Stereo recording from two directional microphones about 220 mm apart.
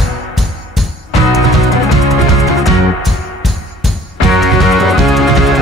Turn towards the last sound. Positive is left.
turn(degrees=0)  # may be behind; listen again after turning